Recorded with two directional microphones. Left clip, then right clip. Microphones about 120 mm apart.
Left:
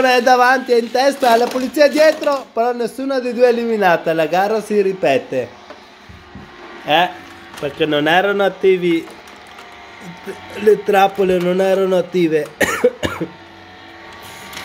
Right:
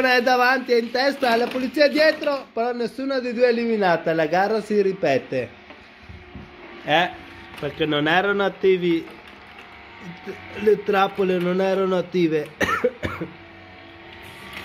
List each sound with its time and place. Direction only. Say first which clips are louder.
0.0 s speech: left 6 dB; 20° left (ahead or behind)
6.9 s speech: left 5 dB; centre (ahead or behind)
10.2 s speech: left 6 dB; 15° left (ahead or behind)
12.7 s cough: left 7 dB; 40° left (ahead or behind)